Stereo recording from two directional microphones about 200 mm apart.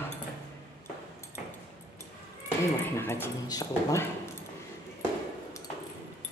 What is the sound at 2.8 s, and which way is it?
Speech, 10° left (ahead or behind).